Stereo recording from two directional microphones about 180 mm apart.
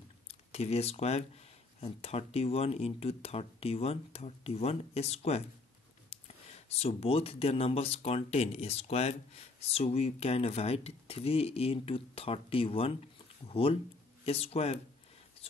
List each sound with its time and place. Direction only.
0.3 s speech: 35° left (ahead or behind)